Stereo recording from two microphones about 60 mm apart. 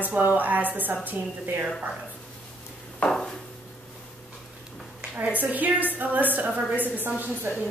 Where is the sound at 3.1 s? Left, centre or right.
Centre.